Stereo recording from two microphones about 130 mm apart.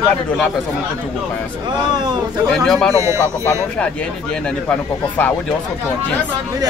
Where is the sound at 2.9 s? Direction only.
20° right (ahead or behind).